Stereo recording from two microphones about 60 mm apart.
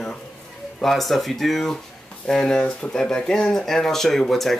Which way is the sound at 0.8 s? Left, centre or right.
Centre.